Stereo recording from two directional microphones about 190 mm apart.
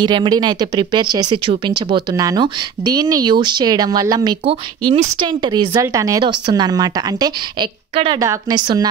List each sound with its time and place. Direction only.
0.0 s a woman's voice: 25° right (ahead or behind)